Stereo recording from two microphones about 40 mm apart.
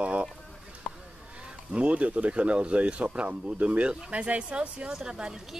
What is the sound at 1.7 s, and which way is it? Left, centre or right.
Speech, right.